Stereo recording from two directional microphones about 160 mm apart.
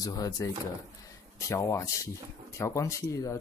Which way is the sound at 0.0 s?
20° left (ahead or behind).